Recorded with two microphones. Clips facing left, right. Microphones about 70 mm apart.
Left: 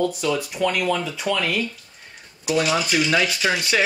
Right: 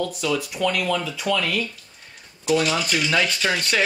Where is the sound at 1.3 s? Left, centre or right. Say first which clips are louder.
Right 1 dB; right.